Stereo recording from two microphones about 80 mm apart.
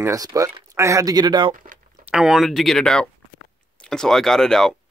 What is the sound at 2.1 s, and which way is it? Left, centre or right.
Speech, centre.